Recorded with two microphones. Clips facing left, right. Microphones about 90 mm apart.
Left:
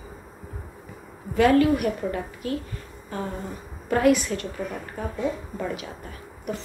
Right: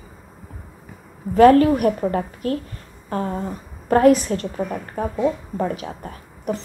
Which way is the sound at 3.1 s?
45° right (ahead or behind).